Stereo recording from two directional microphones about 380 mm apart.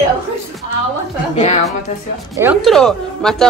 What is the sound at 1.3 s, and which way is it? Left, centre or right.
Speech, centre.